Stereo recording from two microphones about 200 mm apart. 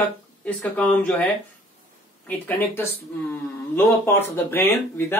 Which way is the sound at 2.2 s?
10° left (ahead or behind).